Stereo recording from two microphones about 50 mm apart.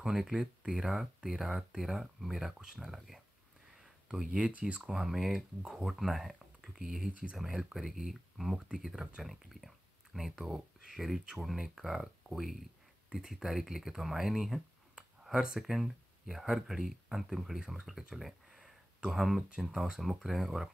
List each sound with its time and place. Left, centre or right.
0.0 s speech: centre
3.7 s a sound: centre
4.5 s speech: right
4.8 s speech: centre
5.6 s speech: centre
5.9 s speech: centre
7.1 s speech: right
7.3 s speech: centre
17.8 s a sound: centre
19.0 s speech: centre